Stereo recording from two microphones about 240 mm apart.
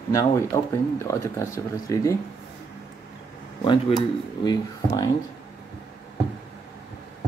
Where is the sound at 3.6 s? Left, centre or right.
Centre.